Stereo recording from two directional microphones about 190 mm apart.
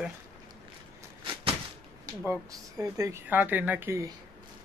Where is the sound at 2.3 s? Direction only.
15° right (ahead or behind).